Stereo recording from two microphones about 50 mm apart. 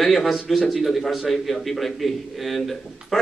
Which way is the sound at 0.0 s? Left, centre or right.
Centre.